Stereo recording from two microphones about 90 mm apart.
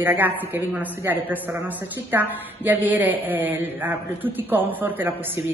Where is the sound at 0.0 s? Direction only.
20° right (ahead or behind).